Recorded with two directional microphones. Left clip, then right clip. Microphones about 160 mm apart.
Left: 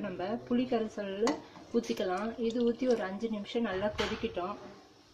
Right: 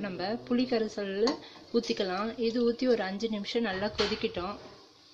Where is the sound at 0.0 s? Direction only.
10° right (ahead or behind).